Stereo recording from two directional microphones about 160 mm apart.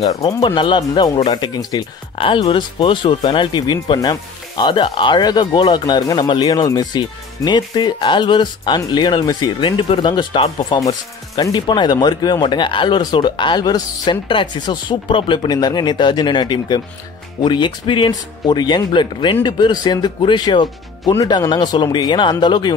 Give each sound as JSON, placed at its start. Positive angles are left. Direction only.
{"t": 0.3, "sound": "speech", "side_deg": 25}